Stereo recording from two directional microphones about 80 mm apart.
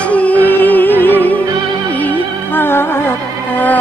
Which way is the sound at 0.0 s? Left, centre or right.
Centre.